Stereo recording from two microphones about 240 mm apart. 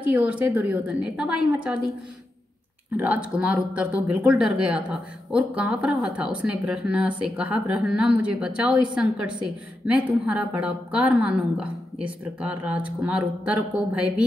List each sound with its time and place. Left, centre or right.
0.0 s speech: centre
3.0 s speech: centre